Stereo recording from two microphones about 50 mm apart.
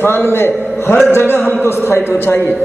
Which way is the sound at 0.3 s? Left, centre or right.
Left.